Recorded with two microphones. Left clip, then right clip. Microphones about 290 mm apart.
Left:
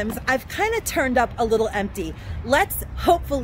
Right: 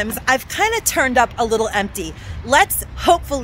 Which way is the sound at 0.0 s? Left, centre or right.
Centre.